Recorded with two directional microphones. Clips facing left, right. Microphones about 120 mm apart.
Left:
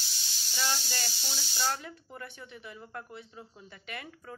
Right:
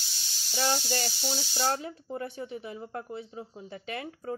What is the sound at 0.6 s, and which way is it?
Speech, 35° right (ahead or behind).